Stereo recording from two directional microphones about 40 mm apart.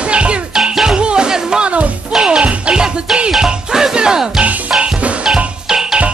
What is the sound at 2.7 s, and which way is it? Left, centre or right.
Music, right.